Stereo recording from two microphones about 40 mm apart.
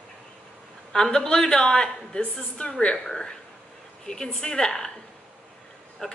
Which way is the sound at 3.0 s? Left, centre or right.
Centre.